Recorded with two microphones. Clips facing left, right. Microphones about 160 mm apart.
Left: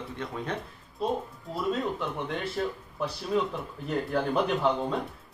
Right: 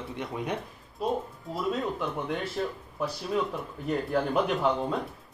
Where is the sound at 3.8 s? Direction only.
5° right (ahead or behind).